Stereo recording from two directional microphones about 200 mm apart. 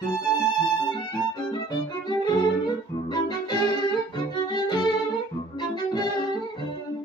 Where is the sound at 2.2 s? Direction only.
20° left (ahead or behind).